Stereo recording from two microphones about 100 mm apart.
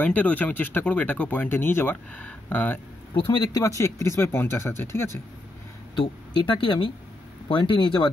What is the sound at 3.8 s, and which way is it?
Speech, 25° left (ahead or behind).